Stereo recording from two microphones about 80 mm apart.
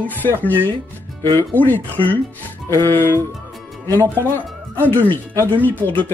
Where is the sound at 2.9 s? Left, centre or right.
Left.